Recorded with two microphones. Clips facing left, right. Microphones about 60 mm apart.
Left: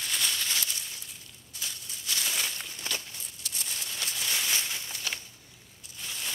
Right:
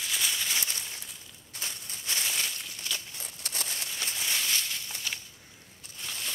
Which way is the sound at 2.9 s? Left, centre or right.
Left.